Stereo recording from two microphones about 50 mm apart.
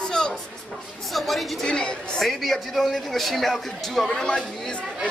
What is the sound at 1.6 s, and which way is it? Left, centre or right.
Speech, centre.